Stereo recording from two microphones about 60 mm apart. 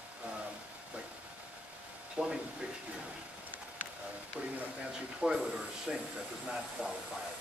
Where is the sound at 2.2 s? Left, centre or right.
Centre.